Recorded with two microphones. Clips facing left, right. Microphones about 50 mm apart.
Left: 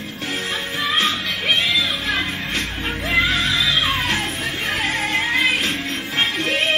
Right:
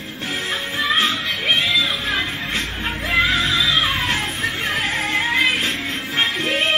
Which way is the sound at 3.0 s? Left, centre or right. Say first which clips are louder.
Right 1 dB; centre.